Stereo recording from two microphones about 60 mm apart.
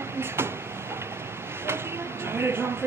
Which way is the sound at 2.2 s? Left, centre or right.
Right.